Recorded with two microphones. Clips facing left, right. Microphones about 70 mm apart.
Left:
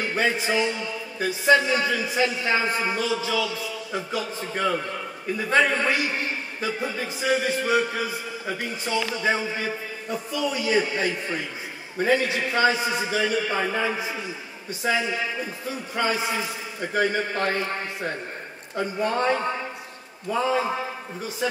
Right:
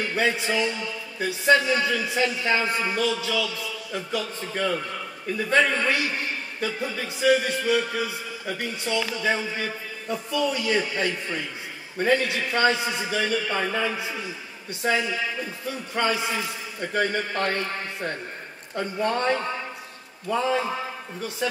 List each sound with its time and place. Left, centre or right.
0.1 s a man's voice: centre
16.1 s a man's voice: centre